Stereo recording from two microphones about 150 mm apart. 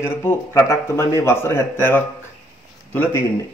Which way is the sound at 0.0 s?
15° left (ahead or behind).